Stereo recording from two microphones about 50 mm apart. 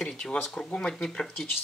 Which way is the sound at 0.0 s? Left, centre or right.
Centre.